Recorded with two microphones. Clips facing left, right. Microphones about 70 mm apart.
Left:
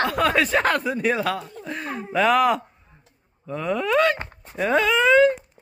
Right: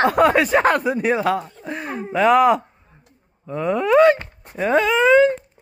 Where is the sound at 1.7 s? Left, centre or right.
Centre.